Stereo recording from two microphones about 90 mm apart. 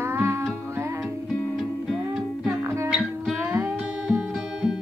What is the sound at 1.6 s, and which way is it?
Music, centre (ahead or behind).